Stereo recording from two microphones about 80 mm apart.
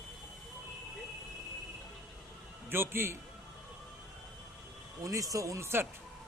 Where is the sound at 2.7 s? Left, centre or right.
Right.